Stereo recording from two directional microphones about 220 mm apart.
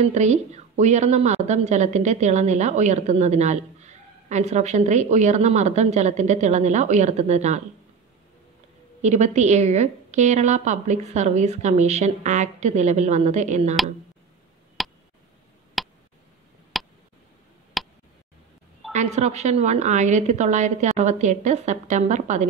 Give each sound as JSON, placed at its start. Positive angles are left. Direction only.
{"t": 0.0, "sound": "a woman's voice", "side_deg": -30}
{"t": 9.0, "sound": "a woman's voice", "side_deg": -30}
{"t": 14.8, "sound": "tick", "side_deg": 0}
{"t": 16.7, "sound": "a sound", "side_deg": 0}
{"t": 18.9, "sound": "a woman's voice", "side_deg": -30}